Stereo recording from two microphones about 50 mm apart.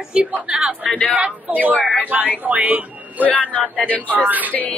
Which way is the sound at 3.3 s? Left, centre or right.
Left.